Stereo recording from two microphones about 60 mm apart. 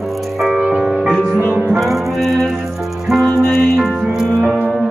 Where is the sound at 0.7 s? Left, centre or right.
Centre.